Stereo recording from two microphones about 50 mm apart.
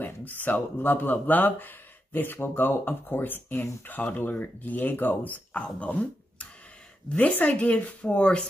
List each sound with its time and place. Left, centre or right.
0.0 s speech: left
7.2 s a woman's voice: left